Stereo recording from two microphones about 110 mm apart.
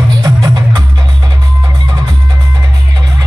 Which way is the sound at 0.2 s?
35° right (ahead or behind).